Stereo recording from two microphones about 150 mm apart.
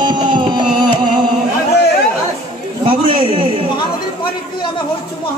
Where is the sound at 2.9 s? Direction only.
35° right (ahead or behind).